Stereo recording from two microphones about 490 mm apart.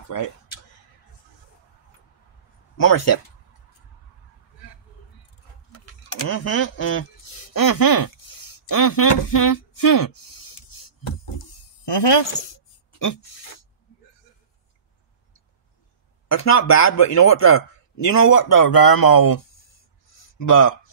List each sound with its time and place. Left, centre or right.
2.8 s a man's voice: left
6.0 s speech: left
7.5 s speech: left
11.8 s speech: left
16.3 s a man's voice: left
20.2 s a sound: left